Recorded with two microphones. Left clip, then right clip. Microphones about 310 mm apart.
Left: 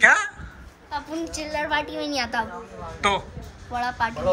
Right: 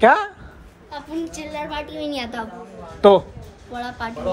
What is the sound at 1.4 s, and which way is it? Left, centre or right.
Speech, centre.